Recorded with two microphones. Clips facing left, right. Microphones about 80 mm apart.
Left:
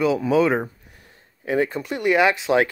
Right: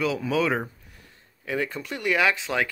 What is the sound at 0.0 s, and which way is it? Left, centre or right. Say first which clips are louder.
Speech: left 6 dB; centre.